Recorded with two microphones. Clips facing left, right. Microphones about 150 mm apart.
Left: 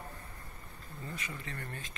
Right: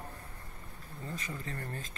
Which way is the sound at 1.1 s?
35° right (ahead or behind).